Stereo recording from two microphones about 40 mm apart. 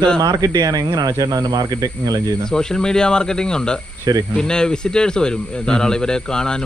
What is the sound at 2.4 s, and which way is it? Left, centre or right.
Speech, centre.